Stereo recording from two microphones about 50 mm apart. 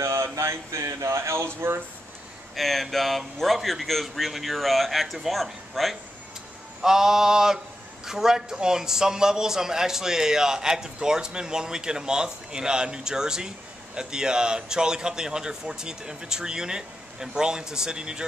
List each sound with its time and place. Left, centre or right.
0.0 s a sound: right
2.5 s speech: centre
6.8 s a man's voice: centre